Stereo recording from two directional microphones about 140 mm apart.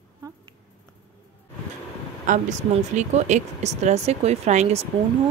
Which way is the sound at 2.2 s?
60° right (ahead or behind).